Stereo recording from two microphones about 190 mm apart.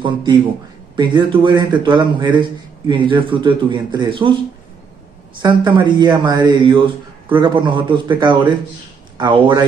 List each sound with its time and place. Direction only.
0.0 s speech: 25° right (ahead or behind)
5.4 s speech: 25° right (ahead or behind)